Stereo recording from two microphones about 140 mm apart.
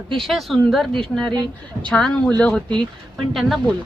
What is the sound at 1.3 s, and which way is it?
Speech, 30° right (ahead or behind).